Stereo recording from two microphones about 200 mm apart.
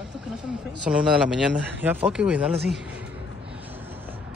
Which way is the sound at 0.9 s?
5° right (ahead or behind).